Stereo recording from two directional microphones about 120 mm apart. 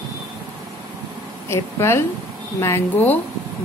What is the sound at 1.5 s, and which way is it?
A woman's voice, 20° left (ahead or behind).